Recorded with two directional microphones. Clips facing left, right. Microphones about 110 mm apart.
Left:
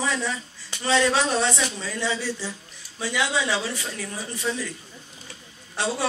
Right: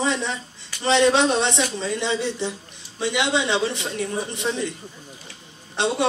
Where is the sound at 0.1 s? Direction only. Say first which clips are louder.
Right 2 dB; 25° right (ahead or behind).